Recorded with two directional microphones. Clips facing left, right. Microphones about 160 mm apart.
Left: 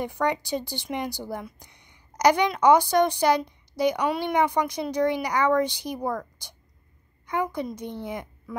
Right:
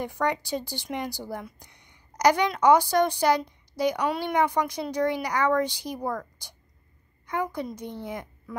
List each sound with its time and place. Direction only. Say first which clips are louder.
0.0 s a woman's voice: left 1 dB; 20° left (ahead or behind)
2.1 s a sound: left 1 dB; 20° left (ahead or behind)
2.6 s a woman's voice: left 1 dB; 20° left (ahead or behind)